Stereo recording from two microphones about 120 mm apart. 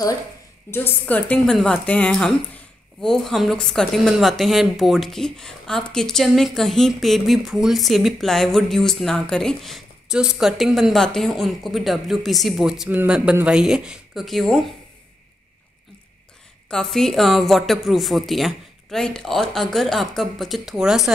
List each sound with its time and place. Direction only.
0.7 s a woman's voice: 15° left (ahead or behind); by 14.6 s centre (ahead or behind)
16.6 s a woman's voice: 5° left (ahead or behind)